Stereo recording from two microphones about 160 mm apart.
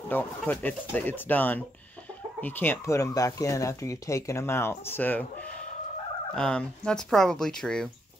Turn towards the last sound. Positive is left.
turn(degrees=5)  # may be behind; listen again after turning